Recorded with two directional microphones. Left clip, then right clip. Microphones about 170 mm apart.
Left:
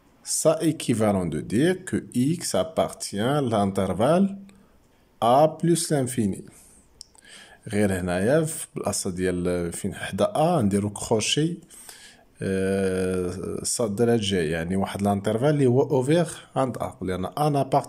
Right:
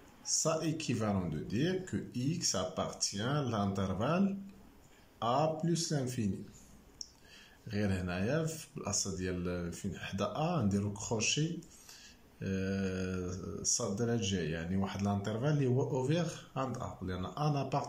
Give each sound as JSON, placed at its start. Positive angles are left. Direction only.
{"t": 0.2, "sound": "speech", "side_deg": 55}
{"t": 5.2, "sound": "speech", "side_deg": 50}